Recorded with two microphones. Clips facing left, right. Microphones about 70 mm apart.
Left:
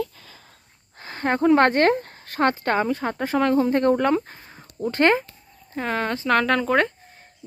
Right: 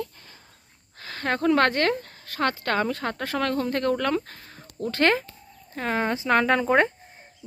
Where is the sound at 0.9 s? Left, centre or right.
Left.